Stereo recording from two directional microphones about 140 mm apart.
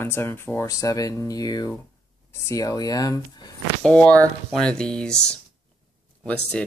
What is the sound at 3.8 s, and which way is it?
Speech, 10° left (ahead or behind).